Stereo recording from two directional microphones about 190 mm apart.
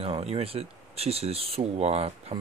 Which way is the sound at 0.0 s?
30° right (ahead or behind).